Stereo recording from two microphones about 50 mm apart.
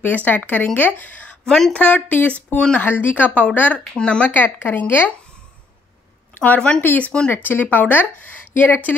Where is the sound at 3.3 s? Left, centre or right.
Left.